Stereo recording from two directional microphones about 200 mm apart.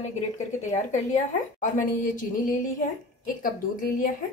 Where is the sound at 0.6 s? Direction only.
35° left (ahead or behind).